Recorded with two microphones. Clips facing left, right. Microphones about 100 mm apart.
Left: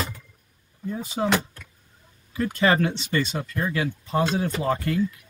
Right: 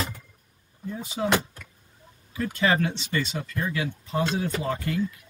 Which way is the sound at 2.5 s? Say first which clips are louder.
Left 3 dB; 40° left (ahead or behind).